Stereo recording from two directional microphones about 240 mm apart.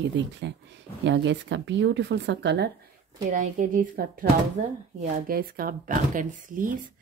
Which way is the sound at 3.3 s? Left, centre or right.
Right.